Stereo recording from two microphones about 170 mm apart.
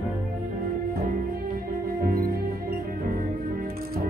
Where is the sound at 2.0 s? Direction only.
60° right (ahead or behind).